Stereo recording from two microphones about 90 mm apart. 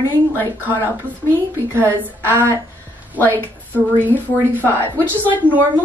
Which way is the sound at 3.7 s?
20° right (ahead or behind).